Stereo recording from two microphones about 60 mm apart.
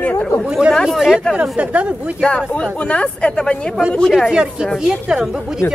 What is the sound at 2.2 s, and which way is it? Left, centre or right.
Speech, centre.